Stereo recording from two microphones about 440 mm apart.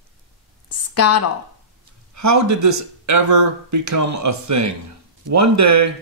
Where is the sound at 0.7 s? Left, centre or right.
Left.